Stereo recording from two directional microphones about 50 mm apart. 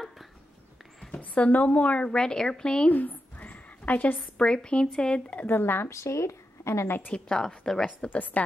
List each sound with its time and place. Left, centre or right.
1.1 s a woman's voice: left
2.1 s speech: centre
2.9 s a sound: left
4.4 s a woman's voice: centre
5.5 s speech: left
5.9 s speech: left
7.2 s speech: centre
7.8 s a woman's voice: left